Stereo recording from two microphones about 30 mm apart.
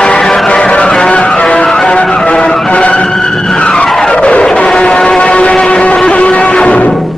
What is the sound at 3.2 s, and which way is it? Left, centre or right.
Vehicle, left.